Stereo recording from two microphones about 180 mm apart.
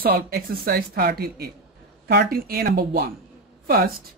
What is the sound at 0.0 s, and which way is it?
Speech, 55° right (ahead or behind).